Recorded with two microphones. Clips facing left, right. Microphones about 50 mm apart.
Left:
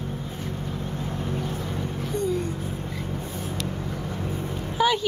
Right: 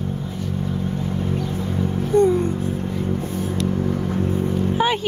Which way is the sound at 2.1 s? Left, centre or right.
Right.